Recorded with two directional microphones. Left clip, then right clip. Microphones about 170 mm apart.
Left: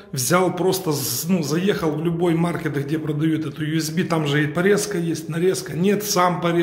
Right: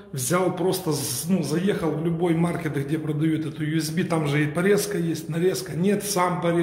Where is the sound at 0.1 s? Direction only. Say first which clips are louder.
Left 4 dB; 30° left (ahead or behind).